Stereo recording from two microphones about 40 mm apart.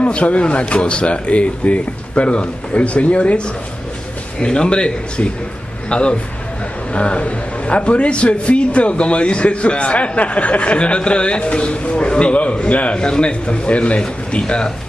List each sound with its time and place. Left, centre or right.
0.0 s a man's voice: left
12.9 s a man's voice: left